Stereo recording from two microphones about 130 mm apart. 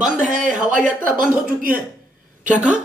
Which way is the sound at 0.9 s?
90° right.